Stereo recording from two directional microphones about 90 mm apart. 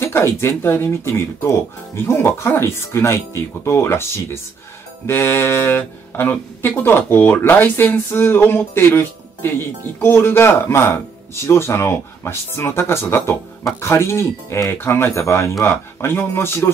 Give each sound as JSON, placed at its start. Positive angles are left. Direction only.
{"t": 0.0, "sound": "speech", "side_deg": 30}